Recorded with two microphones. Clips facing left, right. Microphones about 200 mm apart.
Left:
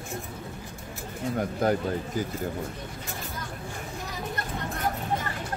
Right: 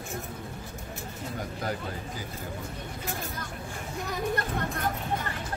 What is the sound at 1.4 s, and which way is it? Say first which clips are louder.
Speech: left 9 dB; 50° left (ahead or behind).